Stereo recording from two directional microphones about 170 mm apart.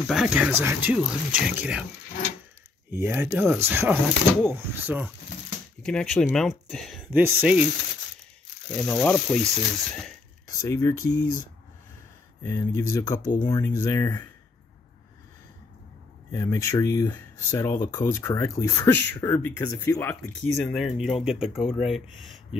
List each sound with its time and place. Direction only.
0.0 s speech: centre (ahead or behind)
2.9 s speech: 15° right (ahead or behind)
5.8 s speech: 5° left (ahead or behind)
7.1 s speech: 10° right (ahead or behind)
8.6 s speech: 10° left (ahead or behind)
10.7 s speech: 20° left (ahead or behind)
12.4 s speech: 15° left (ahead or behind)
16.3 s speech: 15° left (ahead or behind); by 22.6 s centre (ahead or behind)